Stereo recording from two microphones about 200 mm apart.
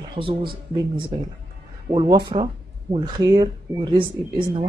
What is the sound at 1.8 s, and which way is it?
Speech, 20° right (ahead or behind).